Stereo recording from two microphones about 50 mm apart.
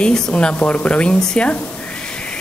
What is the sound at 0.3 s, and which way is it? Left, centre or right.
Speech, left.